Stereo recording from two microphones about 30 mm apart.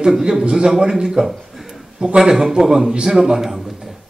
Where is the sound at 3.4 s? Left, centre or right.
Centre.